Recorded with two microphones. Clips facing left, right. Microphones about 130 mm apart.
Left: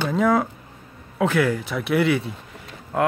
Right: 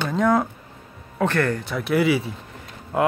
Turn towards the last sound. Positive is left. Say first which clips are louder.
# right 1 dB
turn(degrees=-5)  # may be behind; listen again after turning